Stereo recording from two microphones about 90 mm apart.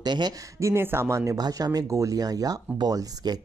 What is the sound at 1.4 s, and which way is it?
Speech, 45° right (ahead or behind).